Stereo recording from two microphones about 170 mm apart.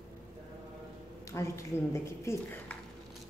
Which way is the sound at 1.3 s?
15° left (ahead or behind).